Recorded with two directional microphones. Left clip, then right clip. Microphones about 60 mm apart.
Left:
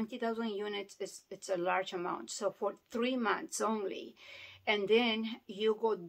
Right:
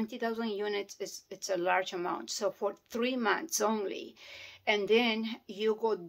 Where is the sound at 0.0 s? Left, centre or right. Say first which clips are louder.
Right 2 dB; centre.